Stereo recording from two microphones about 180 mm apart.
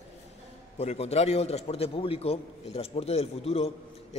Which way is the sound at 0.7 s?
35° left (ahead or behind).